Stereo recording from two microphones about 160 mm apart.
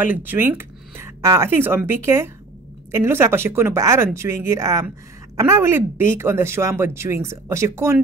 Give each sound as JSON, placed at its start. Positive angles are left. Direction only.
{"t": 0.0, "sound": "speech", "side_deg": -10}